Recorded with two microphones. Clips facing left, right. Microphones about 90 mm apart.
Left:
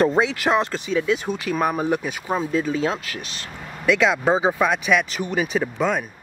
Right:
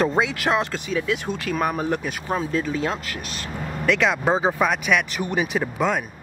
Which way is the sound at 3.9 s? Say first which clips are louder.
Left 2 dB; centre (ahead or behind).